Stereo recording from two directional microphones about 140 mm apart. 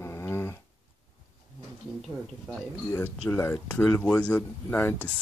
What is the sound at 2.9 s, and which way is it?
Speech, 15° left (ahead or behind).